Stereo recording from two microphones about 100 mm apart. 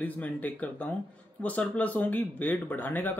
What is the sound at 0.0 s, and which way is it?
Speech, 15° left (ahead or behind).